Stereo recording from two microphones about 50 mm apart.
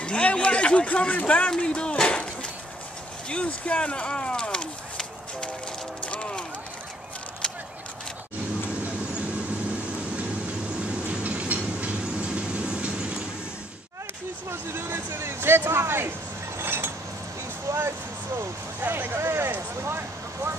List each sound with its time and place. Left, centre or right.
0.0 s speech: left
1.6 s a sound: left
3.3 s speech: left
6.0 s clip-clop: left
11.1 s train: right
14.5 s vehicle: right
15.1 s speech: right
16.5 s a sound: right
17.6 s speech: right
18.8 s speech: right
19.1 s speech: right